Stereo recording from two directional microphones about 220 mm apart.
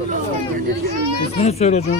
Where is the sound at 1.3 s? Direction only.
30° left (ahead or behind).